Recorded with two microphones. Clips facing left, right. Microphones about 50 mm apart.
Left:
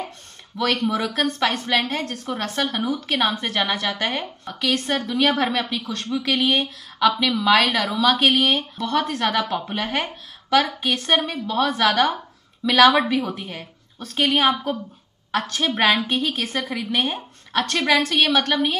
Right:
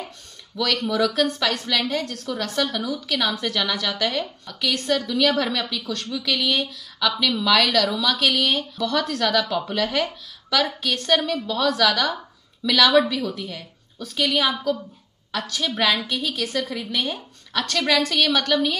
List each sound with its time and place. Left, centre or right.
0.6 s a woman's voice: left